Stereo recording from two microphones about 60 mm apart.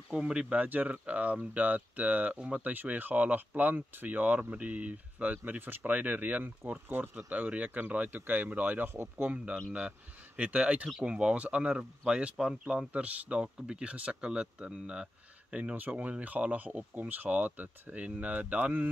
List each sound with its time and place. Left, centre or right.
0.1 s speech: centre; by 9.1 s right
9.2 s speech: right